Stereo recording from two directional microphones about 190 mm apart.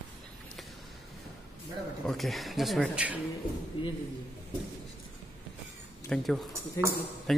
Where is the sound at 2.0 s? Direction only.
Centre (ahead or behind).